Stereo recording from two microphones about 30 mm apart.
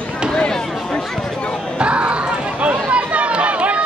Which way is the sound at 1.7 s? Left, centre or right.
Right.